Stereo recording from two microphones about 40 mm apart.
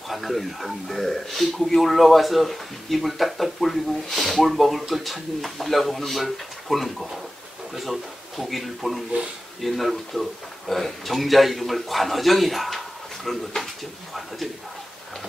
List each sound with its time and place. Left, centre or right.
0.1 s speech: centre